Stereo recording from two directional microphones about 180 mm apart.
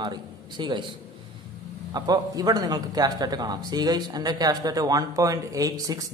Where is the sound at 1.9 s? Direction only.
20° right (ahead or behind).